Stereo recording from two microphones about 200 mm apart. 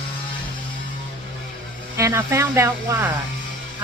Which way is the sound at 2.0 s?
15° right (ahead or behind).